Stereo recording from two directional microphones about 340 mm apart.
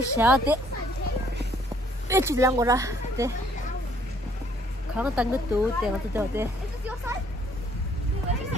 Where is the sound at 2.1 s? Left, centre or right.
Centre.